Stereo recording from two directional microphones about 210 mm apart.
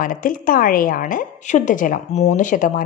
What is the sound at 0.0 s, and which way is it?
A woman's voice, 40° left (ahead or behind).